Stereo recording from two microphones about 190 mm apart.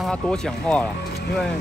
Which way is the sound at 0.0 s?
5° left (ahead or behind).